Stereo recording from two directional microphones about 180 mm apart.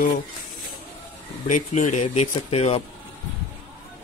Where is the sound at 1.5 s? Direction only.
40° left (ahead or behind).